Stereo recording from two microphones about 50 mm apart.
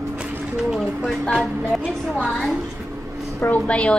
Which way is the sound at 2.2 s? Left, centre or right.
Centre.